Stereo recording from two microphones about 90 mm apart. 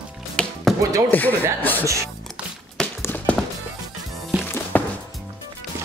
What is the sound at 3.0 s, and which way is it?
Music, 20° left (ahead or behind).